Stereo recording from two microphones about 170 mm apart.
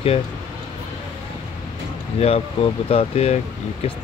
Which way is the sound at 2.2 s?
35° left (ahead or behind).